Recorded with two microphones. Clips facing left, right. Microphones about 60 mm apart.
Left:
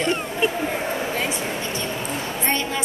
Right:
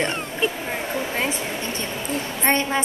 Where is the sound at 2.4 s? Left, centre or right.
Right.